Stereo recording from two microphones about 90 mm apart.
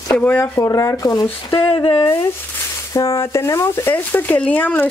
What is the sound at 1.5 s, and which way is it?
Speech, 85° left.